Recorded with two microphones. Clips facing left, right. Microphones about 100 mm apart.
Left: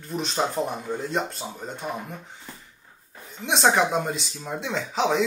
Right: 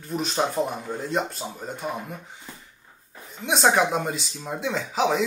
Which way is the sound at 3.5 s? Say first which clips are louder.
Even; centre (ahead or behind).